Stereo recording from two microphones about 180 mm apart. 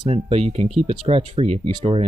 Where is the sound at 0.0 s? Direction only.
35° right (ahead or behind).